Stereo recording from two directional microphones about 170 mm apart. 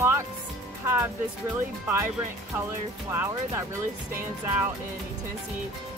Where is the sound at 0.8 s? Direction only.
15° right (ahead or behind).